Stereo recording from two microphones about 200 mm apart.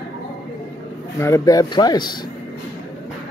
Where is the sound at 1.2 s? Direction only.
15° left (ahead or behind).